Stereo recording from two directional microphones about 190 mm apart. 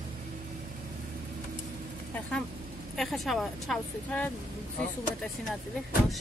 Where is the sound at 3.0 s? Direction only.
Centre (ahead or behind).